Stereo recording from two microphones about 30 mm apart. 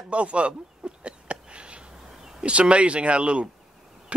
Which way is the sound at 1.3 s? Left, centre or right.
Right.